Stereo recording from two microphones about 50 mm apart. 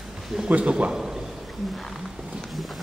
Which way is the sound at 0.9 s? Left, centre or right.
Centre.